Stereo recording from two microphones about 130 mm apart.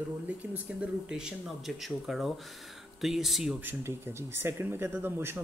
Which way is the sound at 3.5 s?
15° right (ahead or behind).